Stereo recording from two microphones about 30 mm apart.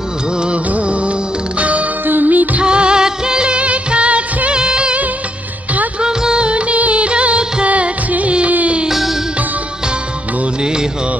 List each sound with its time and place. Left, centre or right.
0.7 s music: right
2.0 s music: right
2.6 s music: right
3.6 s music: right
4.5 s music of bollywood: right
5.9 s music: right
6.4 s music of bollywood: right
7.6 s music: right